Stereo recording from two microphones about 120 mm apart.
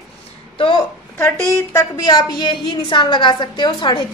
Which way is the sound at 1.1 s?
20° left (ahead or behind).